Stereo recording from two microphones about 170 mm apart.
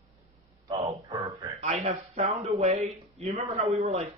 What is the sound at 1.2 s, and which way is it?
Speech, 20° right (ahead or behind).